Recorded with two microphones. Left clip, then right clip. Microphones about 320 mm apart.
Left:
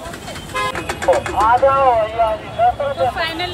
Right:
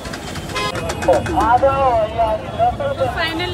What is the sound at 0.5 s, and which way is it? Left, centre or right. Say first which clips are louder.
Speech: left 1 dB; centre.